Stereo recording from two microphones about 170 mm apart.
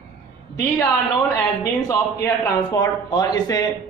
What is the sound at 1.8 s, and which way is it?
A man's voice, 20° left (ahead or behind).